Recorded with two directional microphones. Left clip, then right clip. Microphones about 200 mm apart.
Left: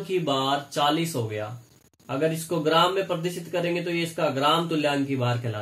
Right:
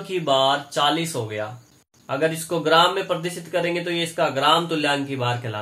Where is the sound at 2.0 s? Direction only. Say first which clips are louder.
Right 3 dB; 20° left (ahead or behind).